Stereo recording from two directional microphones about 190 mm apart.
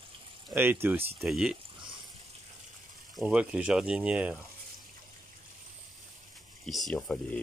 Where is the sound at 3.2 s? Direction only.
5° right (ahead or behind).